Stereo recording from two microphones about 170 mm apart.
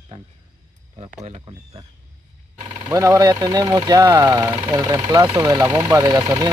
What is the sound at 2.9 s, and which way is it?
Speech, 20° right (ahead or behind).